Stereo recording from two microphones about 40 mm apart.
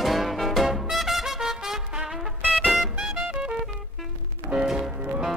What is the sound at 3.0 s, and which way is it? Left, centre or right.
Music, right.